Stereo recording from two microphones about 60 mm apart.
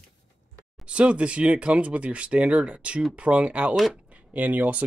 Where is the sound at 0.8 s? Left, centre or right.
Centre.